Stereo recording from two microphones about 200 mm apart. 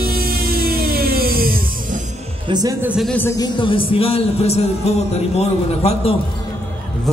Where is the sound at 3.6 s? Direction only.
25° left (ahead or behind).